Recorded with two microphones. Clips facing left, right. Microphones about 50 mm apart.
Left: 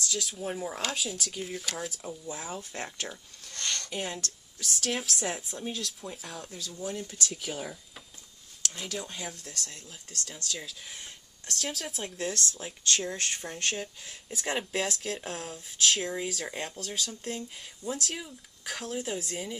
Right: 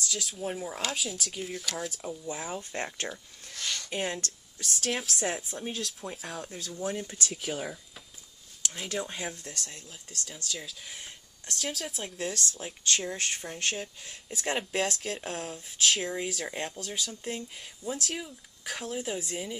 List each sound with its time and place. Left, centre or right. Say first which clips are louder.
0.1 s speech: even; centre
2.7 s speech: right 3 dB; right
3.1 s a sound: right 2 dB; centre
3.9 s speech: right 2 dB; centre
6.8 s speech: right 3 dB; right
7.2 s speech: right 1 dB; centre
8.8 s speech: right 5 dB; right
10.5 s speech: right 1 dB; centre
12.8 s speech: even; centre
16.6 s speech: even; centre